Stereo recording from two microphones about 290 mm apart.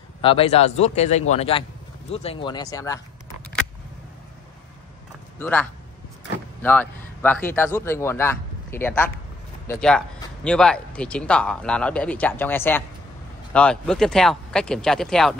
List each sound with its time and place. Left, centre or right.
0.2 s speech: centre
5.4 s speech: centre